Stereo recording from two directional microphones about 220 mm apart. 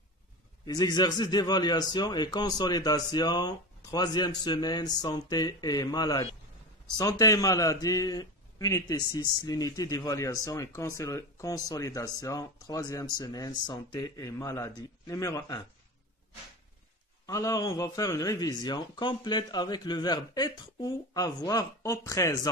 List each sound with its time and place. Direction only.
0.7 s a man's voice: 20° left (ahead or behind)
17.3 s a man's voice: 15° left (ahead or behind)